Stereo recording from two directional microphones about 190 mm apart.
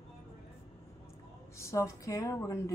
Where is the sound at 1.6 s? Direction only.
15° left (ahead or behind).